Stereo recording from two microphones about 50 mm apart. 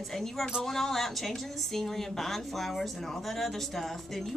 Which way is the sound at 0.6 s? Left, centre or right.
Centre.